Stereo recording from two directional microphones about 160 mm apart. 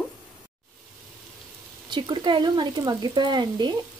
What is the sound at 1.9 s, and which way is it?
Speech, 30° right (ahead or behind).